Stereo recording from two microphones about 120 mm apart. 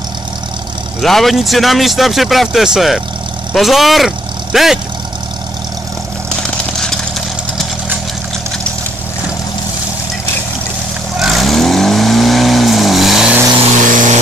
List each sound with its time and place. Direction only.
1.0 s speech: centre (ahead or behind)
6.8 s vehicle: 5° left (ahead or behind)
11.1 s vehicle: centre (ahead or behind)
13.8 s vehicle: 90° right